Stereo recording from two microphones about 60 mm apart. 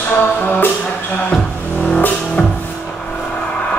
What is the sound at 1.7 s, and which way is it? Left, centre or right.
Music, left.